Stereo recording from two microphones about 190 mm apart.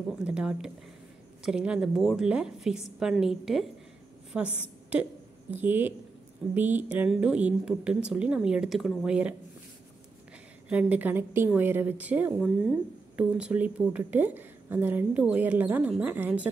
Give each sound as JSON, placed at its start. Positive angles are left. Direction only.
{"t": 0.2, "sound": "a woman's voice", "side_deg": -5}
{"t": 10.7, "sound": "a woman's voice", "side_deg": -5}